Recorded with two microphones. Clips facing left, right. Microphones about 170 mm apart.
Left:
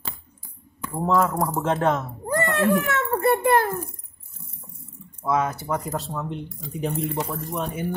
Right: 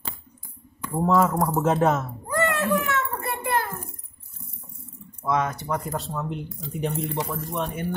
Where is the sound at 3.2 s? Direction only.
50° left (ahead or behind).